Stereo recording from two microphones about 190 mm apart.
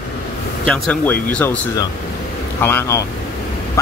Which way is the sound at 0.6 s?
Centre (ahead or behind).